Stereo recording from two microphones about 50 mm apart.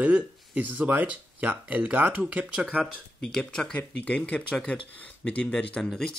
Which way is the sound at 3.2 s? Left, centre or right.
Centre.